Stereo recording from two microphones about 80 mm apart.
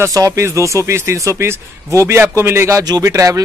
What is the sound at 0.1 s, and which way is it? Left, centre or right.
A man's voice, right.